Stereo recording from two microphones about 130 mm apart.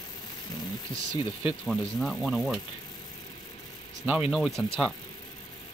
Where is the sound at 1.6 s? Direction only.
5° left (ahead or behind).